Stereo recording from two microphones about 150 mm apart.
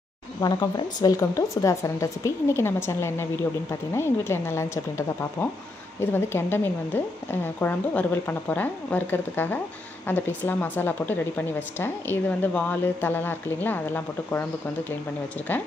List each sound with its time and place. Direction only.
0.4 s a woman's voice: 25° left (ahead or behind)